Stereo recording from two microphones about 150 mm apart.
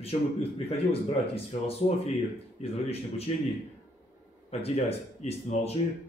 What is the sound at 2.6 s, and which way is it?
Speech, 45° left (ahead or behind).